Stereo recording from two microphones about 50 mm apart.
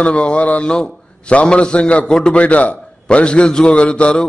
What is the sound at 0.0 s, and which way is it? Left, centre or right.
A man's voice, left.